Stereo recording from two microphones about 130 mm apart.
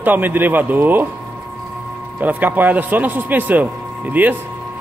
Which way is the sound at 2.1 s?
15° right (ahead or behind).